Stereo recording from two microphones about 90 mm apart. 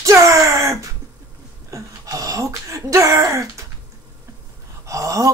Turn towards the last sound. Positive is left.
turn(degrees=-40)  # may be behind; listen again after turning